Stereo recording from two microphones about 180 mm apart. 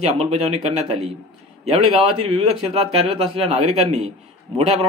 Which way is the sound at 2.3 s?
35° right (ahead or behind).